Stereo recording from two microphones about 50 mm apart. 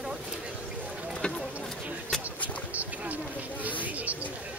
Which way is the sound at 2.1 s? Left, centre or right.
Centre.